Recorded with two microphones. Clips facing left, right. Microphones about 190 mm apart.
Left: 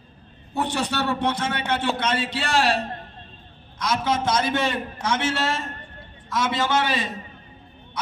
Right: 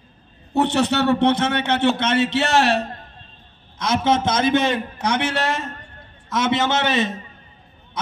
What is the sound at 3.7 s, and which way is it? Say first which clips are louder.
A man's voice: right 5 dB; 25° right (ahead or behind).